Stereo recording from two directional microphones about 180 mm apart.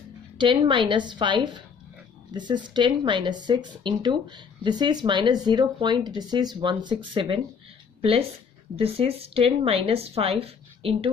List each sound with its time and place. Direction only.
0.4 s a woman's voice: 25° right (ahead or behind)